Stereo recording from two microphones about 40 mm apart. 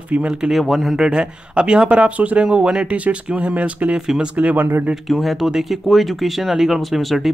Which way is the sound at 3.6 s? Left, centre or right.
Right.